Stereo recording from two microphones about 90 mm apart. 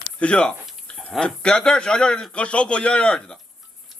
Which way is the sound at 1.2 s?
10° left (ahead or behind).